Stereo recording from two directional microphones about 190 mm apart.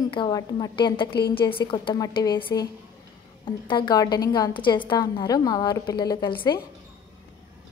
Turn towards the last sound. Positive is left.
turn(degrees=25)  # may be behind; listen again after turning